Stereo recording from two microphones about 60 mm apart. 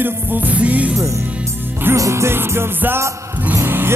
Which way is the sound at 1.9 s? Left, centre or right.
Right.